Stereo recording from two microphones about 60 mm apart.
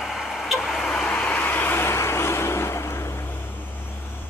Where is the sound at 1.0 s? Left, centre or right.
Left.